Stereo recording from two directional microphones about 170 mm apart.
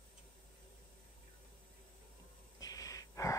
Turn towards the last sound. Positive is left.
turn(degrees=20)  # may be behind; listen again after turning